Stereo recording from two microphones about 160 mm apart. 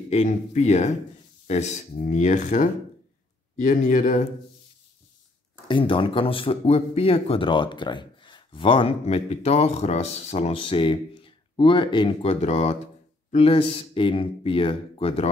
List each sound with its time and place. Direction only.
0.1 s speech: 45° left (ahead or behind)
5.7 s speech: 30° left (ahead or behind)